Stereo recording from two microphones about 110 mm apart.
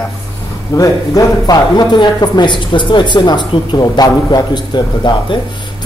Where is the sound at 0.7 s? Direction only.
30° left (ahead or behind).